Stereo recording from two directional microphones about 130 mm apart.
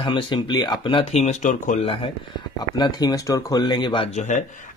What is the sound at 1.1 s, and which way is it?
Speech, 60° left (ahead or behind).